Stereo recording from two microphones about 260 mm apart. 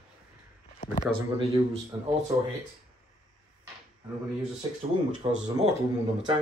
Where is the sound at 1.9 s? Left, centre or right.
Centre.